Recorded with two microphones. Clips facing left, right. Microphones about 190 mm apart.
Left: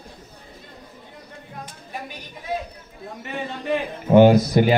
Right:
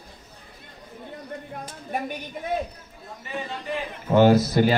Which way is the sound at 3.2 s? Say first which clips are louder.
Left 5 dB; 60° left (ahead or behind).